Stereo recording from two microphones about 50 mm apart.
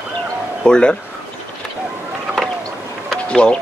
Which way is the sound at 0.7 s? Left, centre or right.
Centre.